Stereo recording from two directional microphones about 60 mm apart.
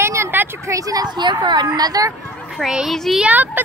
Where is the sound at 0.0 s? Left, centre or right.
Right.